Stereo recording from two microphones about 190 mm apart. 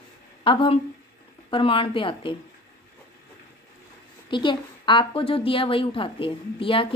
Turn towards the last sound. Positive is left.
turn(degrees=25)  # may be behind; listen again after turning